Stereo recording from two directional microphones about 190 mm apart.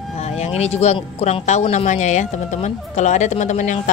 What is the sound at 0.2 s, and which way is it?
Speech, 35° left (ahead or behind).